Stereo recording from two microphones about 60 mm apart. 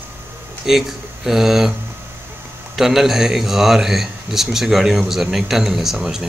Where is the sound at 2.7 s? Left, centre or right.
Centre.